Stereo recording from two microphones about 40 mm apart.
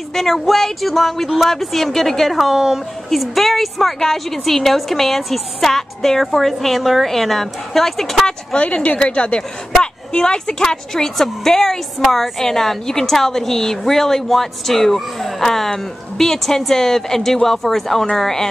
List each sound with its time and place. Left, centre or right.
0.1 s a woman's voice: centre
2.3 s speech: centre
3.1 s a woman's voice: centre
8.5 s a woman's voice: left; by 18.5 s centre